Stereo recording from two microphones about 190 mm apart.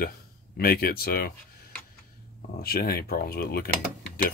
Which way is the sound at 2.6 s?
55° left (ahead or behind).